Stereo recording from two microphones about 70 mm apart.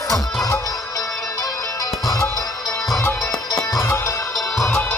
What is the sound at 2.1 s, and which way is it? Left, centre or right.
Music, left.